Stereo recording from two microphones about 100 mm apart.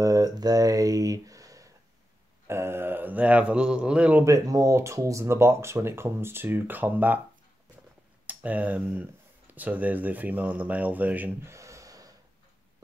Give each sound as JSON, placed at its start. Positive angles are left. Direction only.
{"t": 0.0, "sound": "a sound", "side_deg": -35}
{"t": 2.4, "sound": "speech", "side_deg": -25}
{"t": 4.2, "sound": "speech", "side_deg": -35}
{"t": 8.3, "sound": "speech", "side_deg": -15}
{"t": 11.5, "sound": "gasp", "side_deg": -30}